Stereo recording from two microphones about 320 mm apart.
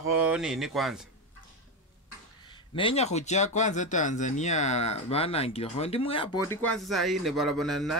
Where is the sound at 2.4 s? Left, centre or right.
Centre.